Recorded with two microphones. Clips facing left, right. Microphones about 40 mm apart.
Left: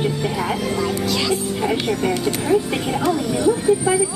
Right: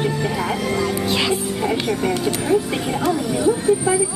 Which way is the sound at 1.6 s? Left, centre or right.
Centre.